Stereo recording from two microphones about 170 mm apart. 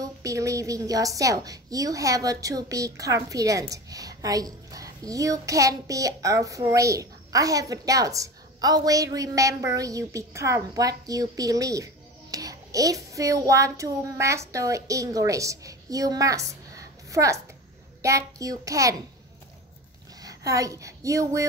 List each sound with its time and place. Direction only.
0.0 s a woman's voice: 20° right (ahead or behind)
20.2 s a woman's voice: 20° right (ahead or behind)